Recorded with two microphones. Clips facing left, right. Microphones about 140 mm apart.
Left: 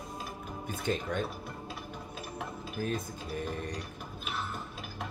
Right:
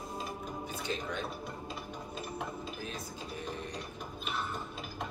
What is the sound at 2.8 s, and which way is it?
Music, 50° left (ahead or behind).